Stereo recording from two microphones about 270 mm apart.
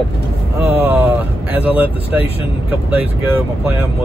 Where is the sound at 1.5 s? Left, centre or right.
Centre.